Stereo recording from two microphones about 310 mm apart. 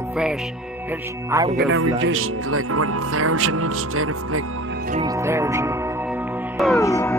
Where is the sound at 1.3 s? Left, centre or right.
Centre.